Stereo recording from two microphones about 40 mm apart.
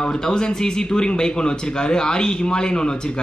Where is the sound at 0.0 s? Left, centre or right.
Centre.